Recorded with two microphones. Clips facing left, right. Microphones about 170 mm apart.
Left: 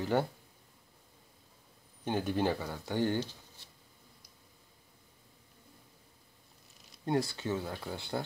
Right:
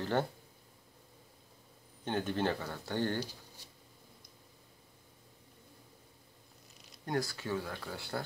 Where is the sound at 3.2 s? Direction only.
10° right (ahead or behind).